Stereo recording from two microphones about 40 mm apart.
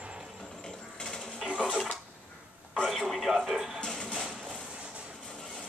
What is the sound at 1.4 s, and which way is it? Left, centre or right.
Dishes, right.